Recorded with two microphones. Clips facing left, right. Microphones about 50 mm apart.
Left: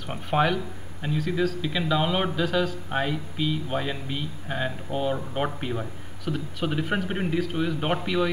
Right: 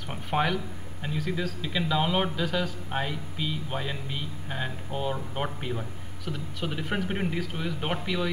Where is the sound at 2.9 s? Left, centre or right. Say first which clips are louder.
Left 4 dB; centre.